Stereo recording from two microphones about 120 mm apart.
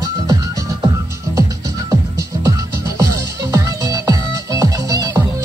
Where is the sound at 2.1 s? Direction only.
25° right (ahead or behind).